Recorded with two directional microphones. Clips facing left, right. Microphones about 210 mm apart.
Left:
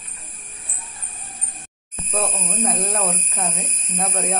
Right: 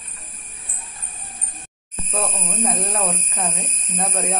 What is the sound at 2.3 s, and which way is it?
Speech, centre (ahead or behind).